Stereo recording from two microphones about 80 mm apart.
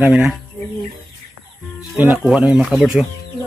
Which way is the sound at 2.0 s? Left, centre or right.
Right.